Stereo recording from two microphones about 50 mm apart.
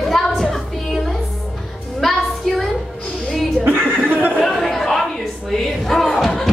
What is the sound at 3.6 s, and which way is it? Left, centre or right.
Music, right.